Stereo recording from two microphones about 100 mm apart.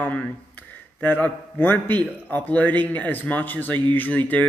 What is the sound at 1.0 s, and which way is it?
A man's voice, 20° left (ahead or behind).